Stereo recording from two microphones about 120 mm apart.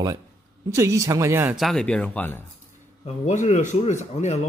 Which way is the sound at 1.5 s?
Centre (ahead or behind).